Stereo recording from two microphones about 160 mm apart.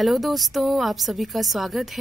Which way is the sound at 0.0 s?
Centre (ahead or behind).